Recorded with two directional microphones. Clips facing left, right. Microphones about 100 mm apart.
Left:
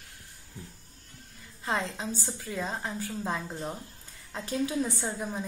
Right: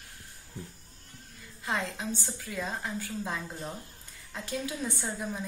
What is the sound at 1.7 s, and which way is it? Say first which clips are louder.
A woman's voice: left 1 dB; 35° left (ahead or behind).